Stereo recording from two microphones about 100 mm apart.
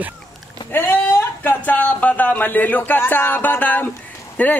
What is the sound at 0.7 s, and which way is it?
Speech, 20° left (ahead or behind).